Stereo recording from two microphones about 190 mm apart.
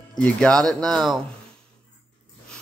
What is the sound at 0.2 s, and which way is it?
Speech, 5° left (ahead or behind).